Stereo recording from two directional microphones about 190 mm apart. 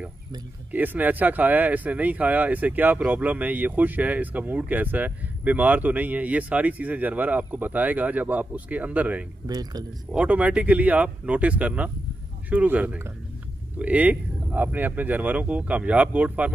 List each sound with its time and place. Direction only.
0.7 s speech: 10° right (ahead or behind)
9.5 s speech: 20° right (ahead or behind)
10.1 s speech: 5° right (ahead or behind)